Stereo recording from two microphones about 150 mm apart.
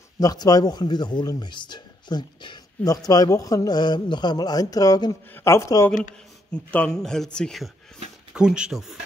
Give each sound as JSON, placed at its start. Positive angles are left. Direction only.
{"t": 0.2, "sound": "speech", "side_deg": 25}
{"t": 6.5, "sound": "speech", "side_deg": 10}